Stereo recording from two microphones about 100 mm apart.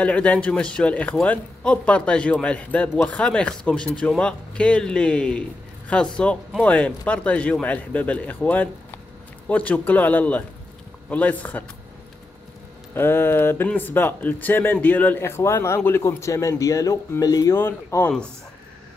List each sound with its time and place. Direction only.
0.0 s speech: 15° left (ahead or behind)
12.9 s speech: 20° left (ahead or behind); by 17.6 s 40° left (ahead or behind)
17.6 s speech: 25° left (ahead or behind)